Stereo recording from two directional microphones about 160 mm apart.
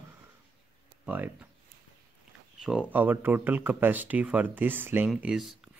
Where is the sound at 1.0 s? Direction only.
10° right (ahead or behind).